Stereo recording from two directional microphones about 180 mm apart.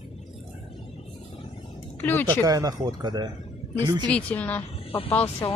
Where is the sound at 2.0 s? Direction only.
10° left (ahead or behind).